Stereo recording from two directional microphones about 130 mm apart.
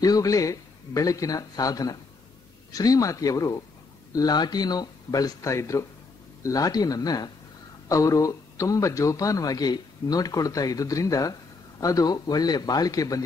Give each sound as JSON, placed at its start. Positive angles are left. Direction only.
{"t": 0.0, "sound": "a man's voice", "side_deg": 30}